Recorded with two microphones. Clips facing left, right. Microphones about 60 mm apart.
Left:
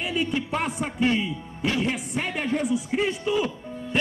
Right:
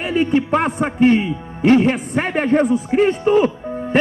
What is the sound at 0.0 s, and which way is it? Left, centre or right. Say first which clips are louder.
A man's voice: right 9 dB; right.